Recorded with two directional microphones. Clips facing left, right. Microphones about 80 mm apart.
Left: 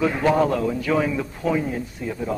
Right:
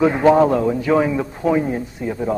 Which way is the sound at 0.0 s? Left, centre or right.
Right.